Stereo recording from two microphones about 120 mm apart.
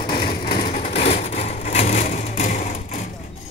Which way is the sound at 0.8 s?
80° left.